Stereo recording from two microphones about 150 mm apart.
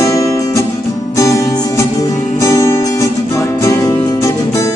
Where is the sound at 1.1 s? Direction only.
20° left (ahead or behind).